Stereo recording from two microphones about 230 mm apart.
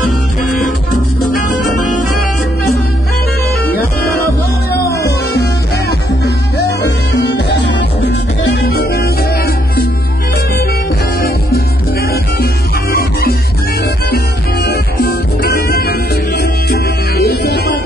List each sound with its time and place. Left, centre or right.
0.4 s music: centre
5.0 s music: left
11.1 s music: left
12.9 s music: left
17.3 s music: left